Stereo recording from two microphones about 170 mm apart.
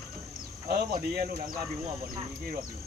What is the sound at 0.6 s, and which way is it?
Speech, 60° right (ahead or behind).